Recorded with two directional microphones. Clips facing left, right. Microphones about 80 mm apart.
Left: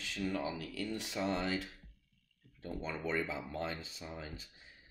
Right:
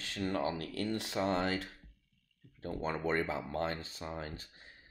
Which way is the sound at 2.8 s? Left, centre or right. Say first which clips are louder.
Right 4 dB; right.